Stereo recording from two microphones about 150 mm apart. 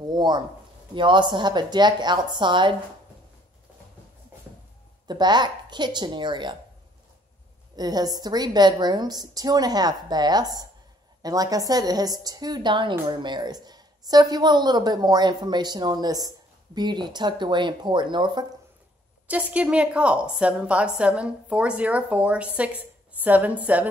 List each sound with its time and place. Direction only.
0.0 s a sound: 30° right (ahead or behind)
0.9 s a woman's voice: 30° right (ahead or behind)
5.0 s a woman's voice: 30° right (ahead or behind)
7.7 s a woman's voice: 25° right (ahead or behind)
19.2 s a woman's voice: 10° right (ahead or behind)